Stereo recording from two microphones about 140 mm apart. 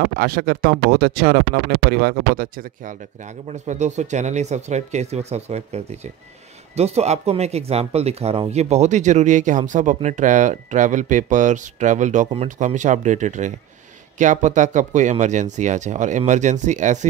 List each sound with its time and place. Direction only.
0.1 s speech: 90° right; by 17.1 s 60° right (ahead or behind)